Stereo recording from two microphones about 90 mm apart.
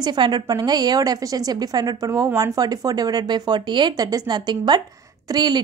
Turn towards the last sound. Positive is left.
turn(degrees=-55)  # may be behind; listen again after turning